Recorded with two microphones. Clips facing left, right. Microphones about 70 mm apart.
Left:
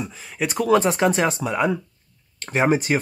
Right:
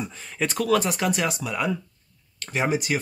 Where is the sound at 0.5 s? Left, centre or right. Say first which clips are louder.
Left 5 dB; left.